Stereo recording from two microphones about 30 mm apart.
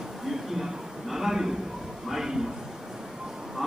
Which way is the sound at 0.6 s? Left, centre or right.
Centre.